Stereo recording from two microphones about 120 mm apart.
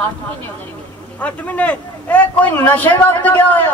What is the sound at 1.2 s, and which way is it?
A man's voice, 10° left (ahead or behind).